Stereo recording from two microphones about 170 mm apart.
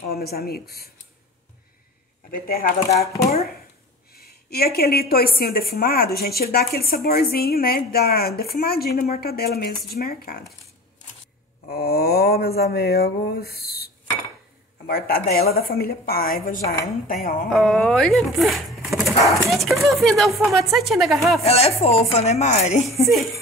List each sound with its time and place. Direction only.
0.1 s a woman's voice: 65° left (ahead or behind)
2.3 s a woman's voice: 60° left (ahead or behind)
4.1 s a woman's voice: 65° left (ahead or behind)
11.7 s a sound: 65° left (ahead or behind)
14.9 s a woman's voice: 60° left (ahead or behind)
17.5 s speech: centre (ahead or behind)
21.4 s speech: 35° left (ahead or behind)
23.0 s speech: centre (ahead or behind)